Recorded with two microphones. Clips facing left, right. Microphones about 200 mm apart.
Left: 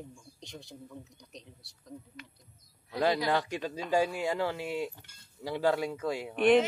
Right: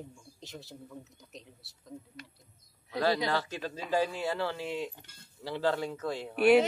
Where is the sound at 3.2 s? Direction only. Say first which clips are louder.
Left 2 dB; 15° left (ahead or behind).